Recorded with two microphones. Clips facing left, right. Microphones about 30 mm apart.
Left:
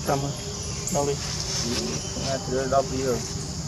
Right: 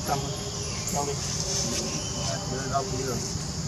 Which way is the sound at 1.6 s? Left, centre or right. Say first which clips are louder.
Left 2 dB; left.